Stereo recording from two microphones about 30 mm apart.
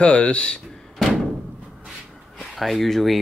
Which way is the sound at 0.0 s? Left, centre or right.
Left.